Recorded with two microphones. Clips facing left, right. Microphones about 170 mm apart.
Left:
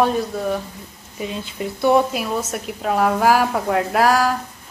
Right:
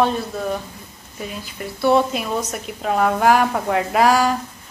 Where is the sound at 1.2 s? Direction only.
15° left (ahead or behind).